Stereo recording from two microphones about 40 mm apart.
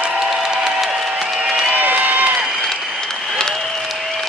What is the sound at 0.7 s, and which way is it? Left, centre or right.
Applause, centre.